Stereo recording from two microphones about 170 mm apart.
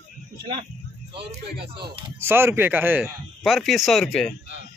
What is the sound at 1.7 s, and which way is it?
Speech, 30° right (ahead or behind).